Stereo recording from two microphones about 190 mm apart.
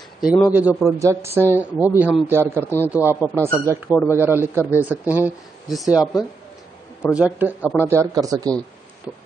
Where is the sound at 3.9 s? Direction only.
15° left (ahead or behind).